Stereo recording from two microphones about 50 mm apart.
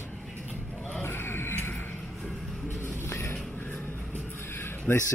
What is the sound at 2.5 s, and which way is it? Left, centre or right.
Music, centre.